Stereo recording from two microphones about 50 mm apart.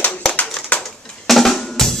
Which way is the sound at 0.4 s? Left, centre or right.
Left.